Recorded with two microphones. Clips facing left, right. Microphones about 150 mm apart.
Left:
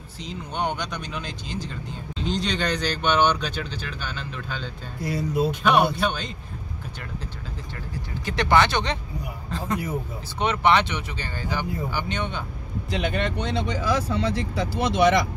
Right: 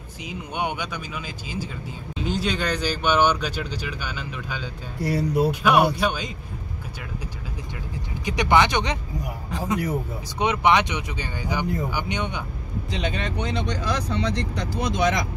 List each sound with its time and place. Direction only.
0.2 s speech: 10° right (ahead or behind)
5.0 s speech: 65° right (ahead or behind)
5.5 s speech: 5° right (ahead or behind)
8.3 s speech: 15° right (ahead or behind)
12.9 s speech: 5° left (ahead or behind)